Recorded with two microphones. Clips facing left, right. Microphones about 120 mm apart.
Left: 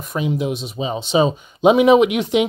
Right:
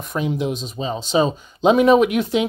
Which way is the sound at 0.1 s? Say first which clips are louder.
Left 1 dB; 5° left (ahead or behind).